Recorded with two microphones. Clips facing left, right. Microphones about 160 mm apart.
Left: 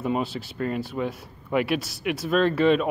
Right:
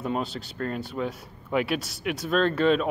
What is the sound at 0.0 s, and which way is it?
Speech, 5° left (ahead or behind).